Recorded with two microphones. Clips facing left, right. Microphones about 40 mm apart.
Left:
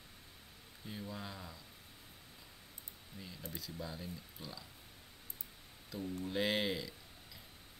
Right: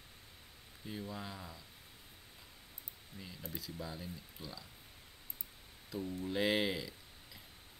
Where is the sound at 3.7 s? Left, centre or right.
Centre.